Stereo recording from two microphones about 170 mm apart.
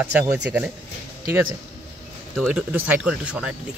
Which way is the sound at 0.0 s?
10° right (ahead or behind).